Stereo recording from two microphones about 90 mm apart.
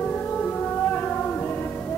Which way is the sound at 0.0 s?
15° left (ahead or behind).